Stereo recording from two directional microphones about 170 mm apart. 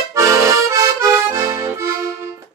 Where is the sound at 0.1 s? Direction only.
15° right (ahead or behind).